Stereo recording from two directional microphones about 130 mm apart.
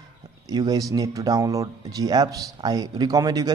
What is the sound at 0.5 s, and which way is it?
A man's voice, 30° right (ahead or behind).